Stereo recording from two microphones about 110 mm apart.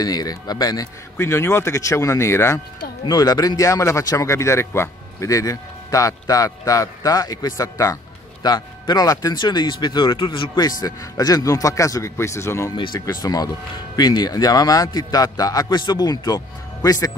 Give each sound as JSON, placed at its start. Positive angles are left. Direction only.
{"t": 0.0, "sound": "speech", "side_deg": 35}
{"t": 1.1, "sound": "speech", "side_deg": 20}
{"t": 3.1, "sound": "speech", "side_deg": 35}
{"t": 10.6, "sound": "speech", "side_deg": 35}
{"t": 12.7, "sound": "speech", "side_deg": 45}
{"t": 13.0, "sound": "speech", "side_deg": 35}